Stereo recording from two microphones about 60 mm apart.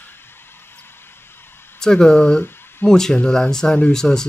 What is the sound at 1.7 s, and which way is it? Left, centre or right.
Speech, centre.